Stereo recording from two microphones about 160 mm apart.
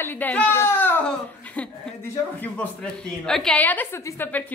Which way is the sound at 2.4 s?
10° left (ahead or behind).